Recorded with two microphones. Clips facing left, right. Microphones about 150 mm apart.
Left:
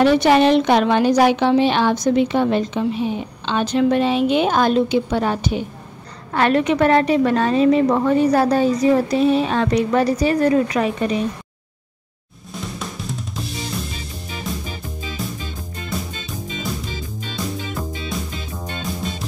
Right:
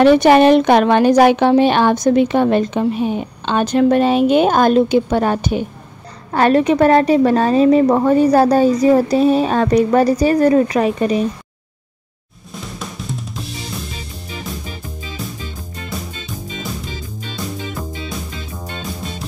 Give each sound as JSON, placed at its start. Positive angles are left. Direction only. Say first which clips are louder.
{"t": 0.0, "sound": "speech", "louder": "right 4 dB", "side_deg": -55}
{"t": 6.3, "sound": "a woman's voice", "louder": "right 4 dB", "side_deg": -40}
{"t": 12.5, "sound": "drum kit", "louder": "even", "side_deg": 0}
{"t": 15.2, "sound": "music", "louder": "right 1 dB", "side_deg": 0}